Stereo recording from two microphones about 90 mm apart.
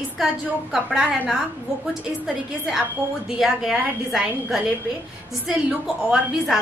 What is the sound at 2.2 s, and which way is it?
A woman's voice, 5° right (ahead or behind).